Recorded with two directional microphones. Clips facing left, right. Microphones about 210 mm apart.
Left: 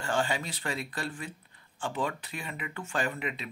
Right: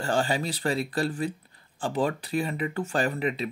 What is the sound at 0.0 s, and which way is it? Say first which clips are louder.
Speech: right 4 dB; 35° right (ahead or behind).